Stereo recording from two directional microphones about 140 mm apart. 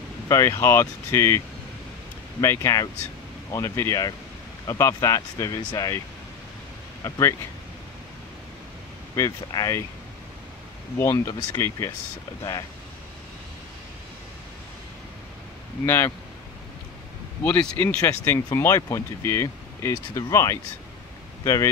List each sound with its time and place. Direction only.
0.3 s speech: 20° left (ahead or behind)
2.4 s speech: 20° left (ahead or behind)
7.1 s speech: 25° left (ahead or behind)
9.1 s speech: 25° left (ahead or behind)
11.0 s speech: 20° left (ahead or behind)
15.8 s speech: 15° left (ahead or behind)
17.5 s speech: 10° left (ahead or behind)